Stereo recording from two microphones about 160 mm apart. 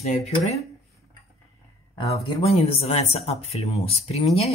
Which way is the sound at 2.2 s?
40° left (ahead or behind).